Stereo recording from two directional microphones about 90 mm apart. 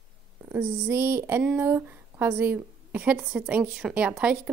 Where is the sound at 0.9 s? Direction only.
25° right (ahead or behind).